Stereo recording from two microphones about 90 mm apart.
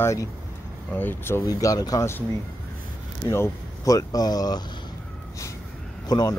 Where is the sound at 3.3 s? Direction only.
30° left (ahead or behind).